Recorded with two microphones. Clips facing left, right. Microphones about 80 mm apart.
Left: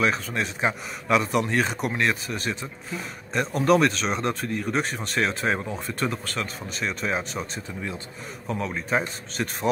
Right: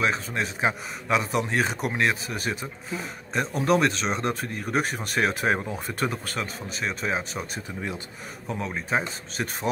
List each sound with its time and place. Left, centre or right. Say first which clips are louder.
0.0 s speech: left 1 dB; centre
4.4 s speech: left 4 dB; right
5.1 s speech: right 1 dB; centre
8.5 s speech: left 1 dB; centre